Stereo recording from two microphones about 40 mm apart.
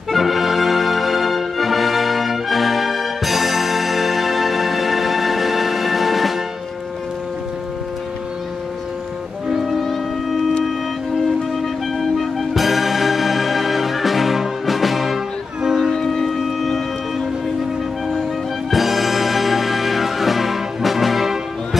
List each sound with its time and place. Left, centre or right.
0.1 s music: centre
9.5 s music: centre
16.1 s music: centre
18.7 s music: centre